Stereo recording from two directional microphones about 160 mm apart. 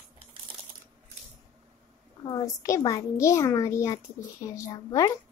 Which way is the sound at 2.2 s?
20° left (ahead or behind).